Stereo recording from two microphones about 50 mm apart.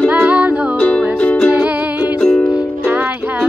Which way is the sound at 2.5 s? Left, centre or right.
Right.